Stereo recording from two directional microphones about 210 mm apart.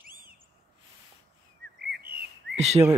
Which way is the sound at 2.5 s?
30° right (ahead or behind).